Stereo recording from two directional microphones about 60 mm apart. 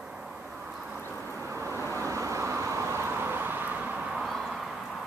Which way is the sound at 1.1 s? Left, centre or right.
Left.